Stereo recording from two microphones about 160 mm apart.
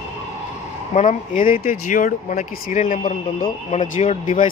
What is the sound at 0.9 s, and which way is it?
Speech, 50° left (ahead or behind).